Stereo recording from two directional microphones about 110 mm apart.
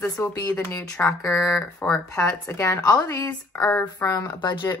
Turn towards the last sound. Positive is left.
turn(degrees=40)  # may be behind; listen again after turning